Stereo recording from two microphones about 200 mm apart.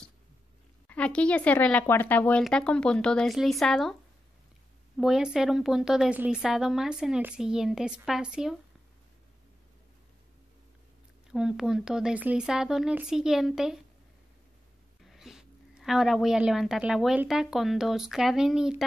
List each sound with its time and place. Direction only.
0.8 s a woman's voice: 5° left (ahead or behind)
4.9 s a woman's voice: centre (ahead or behind)
11.3 s a woman's voice: 5° right (ahead or behind)
15.0 s a woman's voice: centre (ahead or behind)